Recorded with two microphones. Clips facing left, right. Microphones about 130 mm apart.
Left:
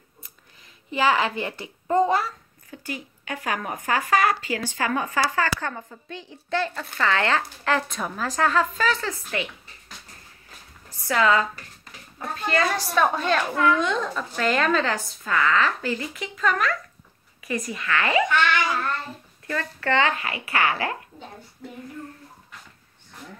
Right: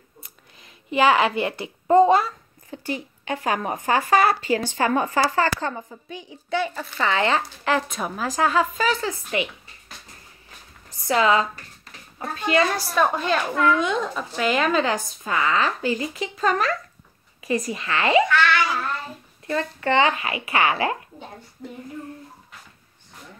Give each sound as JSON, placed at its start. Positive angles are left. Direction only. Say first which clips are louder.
{"t": 0.8, "sound": "speech", "louder": "right 4 dB", "side_deg": -15}
{"t": 5.9, "sound": "speech", "louder": "right 1 dB", "side_deg": -10}
{"t": 11.1, "sound": "speech", "louder": "right 2 dB", "side_deg": -20}
{"t": 12.9, "sound": "a woman's voice", "louder": "left 1 dB", "side_deg": -5}
{"t": 18.3, "sound": "a child's voice", "louder": "right 2 dB", "side_deg": 20}
{"t": 19.4, "sound": "speech", "louder": "right 3 dB", "side_deg": -25}